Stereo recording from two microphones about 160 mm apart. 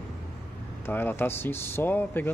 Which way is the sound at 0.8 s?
15° left (ahead or behind).